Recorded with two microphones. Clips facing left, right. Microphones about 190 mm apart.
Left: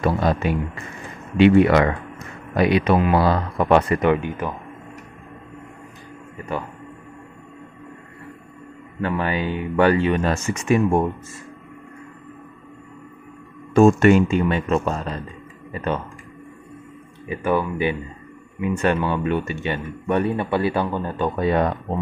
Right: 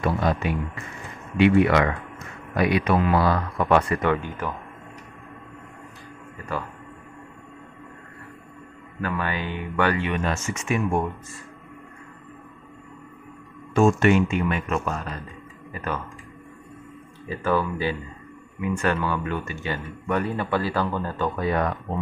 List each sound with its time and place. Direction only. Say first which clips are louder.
0.0 s speech: left 3 dB; 35° left (ahead or behind)
2.5 s speech: left 4 dB; 25° left (ahead or behind)
9.0 s speech: left 5 dB; 25° left (ahead or behind)
13.7 s speech: left 5 dB; 40° left (ahead or behind)
17.3 s speech: left 2 dB; 20° left (ahead or behind)